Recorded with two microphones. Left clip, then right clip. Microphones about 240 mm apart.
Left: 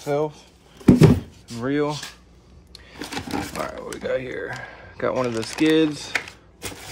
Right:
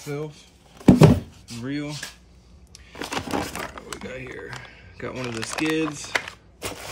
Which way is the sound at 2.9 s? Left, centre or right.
Right.